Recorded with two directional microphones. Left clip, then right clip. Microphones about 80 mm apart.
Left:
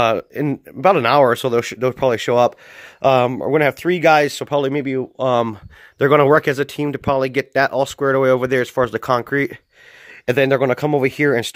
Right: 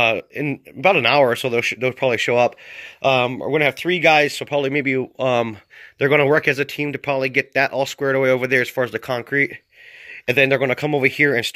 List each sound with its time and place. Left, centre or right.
0.0 s speech: left
1.0 s speech: left
2.8 s speech: left
5.1 s speech: left
5.9 s speech: left
10.2 s speech: left